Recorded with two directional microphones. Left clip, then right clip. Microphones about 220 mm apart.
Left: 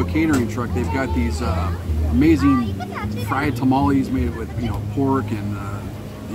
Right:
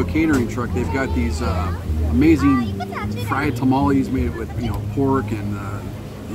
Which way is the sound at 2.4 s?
30° right (ahead or behind).